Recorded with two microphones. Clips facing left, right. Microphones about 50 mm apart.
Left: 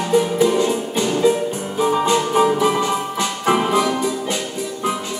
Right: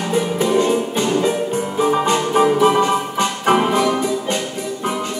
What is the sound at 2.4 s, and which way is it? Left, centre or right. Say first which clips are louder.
Music: right 5 dB; right.